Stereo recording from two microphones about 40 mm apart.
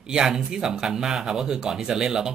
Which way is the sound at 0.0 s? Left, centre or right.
Centre.